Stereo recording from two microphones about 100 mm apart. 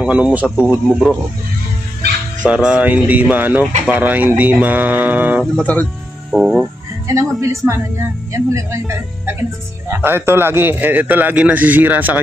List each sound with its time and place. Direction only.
0.0 s speech: 10° right (ahead or behind)
2.4 s speech: 10° right (ahead or behind)
5.4 s speech: 15° left (ahead or behind)
6.3 s speech: centre (ahead or behind)
7.1 s a man's voice: 30° right (ahead or behind)